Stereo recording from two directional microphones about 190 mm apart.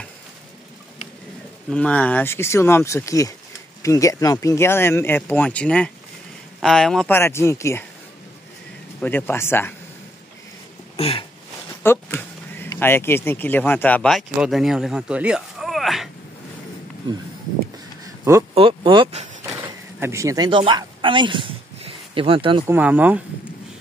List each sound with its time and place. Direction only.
1.7 s speech: 5° left (ahead or behind)
9.0 s speech: 10° left (ahead or behind)
11.0 s a sound: 30° left (ahead or behind)
11.8 s speech: 10° left (ahead or behind)
18.5 s vehicle: 30° right (ahead or behind)
20.0 s speech: 15° right (ahead or behind)
22.7 s speech: 10° right (ahead or behind)